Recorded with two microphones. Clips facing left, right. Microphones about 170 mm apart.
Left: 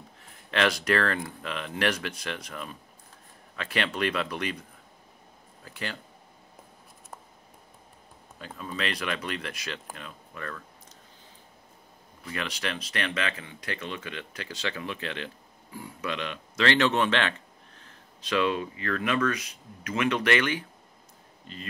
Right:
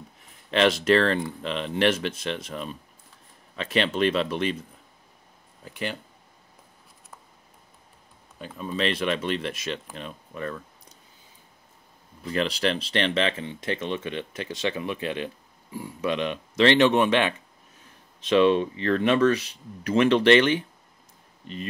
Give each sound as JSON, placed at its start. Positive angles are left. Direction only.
{"t": 0.5, "sound": "speech", "side_deg": -20}
{"t": 5.6, "sound": "speech", "side_deg": -20}
{"t": 8.4, "sound": "speech", "side_deg": -20}
{"t": 12.3, "sound": "speech", "side_deg": -30}
{"t": 18.2, "sound": "speech", "side_deg": -25}